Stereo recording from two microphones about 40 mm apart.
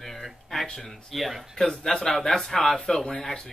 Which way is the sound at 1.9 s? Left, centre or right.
Centre.